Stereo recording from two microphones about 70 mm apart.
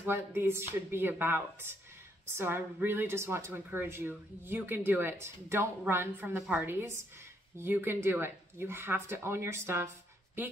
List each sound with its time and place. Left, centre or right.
0.0 s speech: right